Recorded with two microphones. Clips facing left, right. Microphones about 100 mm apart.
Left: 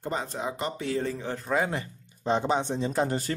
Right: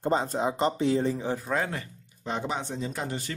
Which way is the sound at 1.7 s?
25° left (ahead or behind).